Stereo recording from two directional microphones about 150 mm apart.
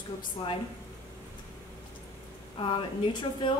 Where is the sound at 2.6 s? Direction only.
30° left (ahead or behind).